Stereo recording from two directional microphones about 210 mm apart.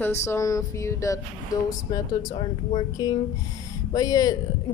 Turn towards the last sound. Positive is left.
turn(degrees=15)  # may be behind; listen again after turning